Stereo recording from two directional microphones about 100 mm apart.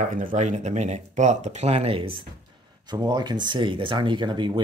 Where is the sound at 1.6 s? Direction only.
90° right; by 2.2 s 65° right (ahead or behind).